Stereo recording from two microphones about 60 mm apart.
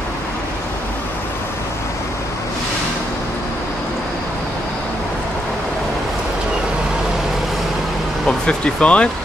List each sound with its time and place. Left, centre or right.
8.3 s speech: centre